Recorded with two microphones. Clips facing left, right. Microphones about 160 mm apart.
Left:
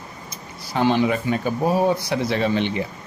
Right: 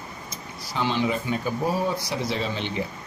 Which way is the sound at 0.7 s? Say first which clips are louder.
Left 6 dB; 55° left (ahead or behind).